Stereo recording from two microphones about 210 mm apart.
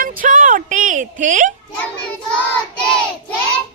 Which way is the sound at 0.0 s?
40° right (ahead or behind).